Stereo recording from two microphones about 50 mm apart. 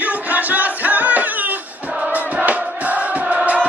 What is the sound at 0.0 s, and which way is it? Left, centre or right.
Music, right.